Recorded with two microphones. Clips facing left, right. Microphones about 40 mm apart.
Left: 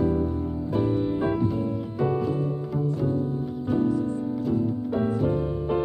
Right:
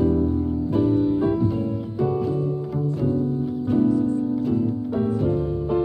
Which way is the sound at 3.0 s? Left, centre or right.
Centre.